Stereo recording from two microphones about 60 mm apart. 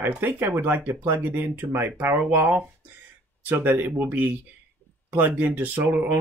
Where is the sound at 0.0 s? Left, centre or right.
Right.